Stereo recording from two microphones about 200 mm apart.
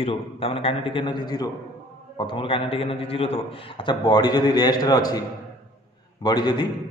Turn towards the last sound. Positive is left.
turn(degrees=20)  # may be behind; listen again after turning